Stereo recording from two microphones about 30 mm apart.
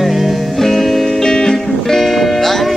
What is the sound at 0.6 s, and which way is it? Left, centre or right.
Music, centre.